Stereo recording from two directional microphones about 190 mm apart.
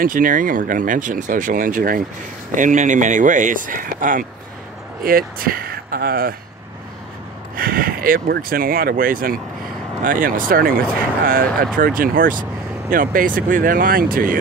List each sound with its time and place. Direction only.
0.0 s speech: 45° right (ahead or behind)
7.5 s speech: 50° right (ahead or behind)